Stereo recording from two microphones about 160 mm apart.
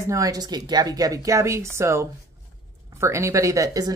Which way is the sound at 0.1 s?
20° right (ahead or behind).